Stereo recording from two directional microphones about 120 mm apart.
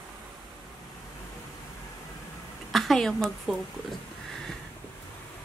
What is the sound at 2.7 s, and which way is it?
Speech, centre (ahead or behind).